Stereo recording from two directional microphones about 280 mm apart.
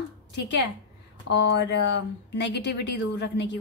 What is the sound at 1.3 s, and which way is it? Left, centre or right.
A woman's voice, left.